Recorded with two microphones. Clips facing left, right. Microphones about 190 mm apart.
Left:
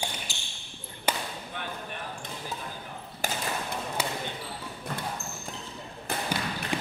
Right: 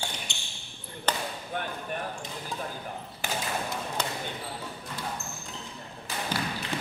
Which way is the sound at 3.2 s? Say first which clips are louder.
Left 1 dB; 40° left (ahead or behind).